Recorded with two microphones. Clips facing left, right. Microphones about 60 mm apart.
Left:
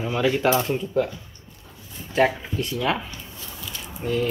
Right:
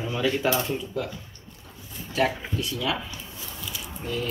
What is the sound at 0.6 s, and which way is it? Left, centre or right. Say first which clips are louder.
Speech: left 6 dB; left.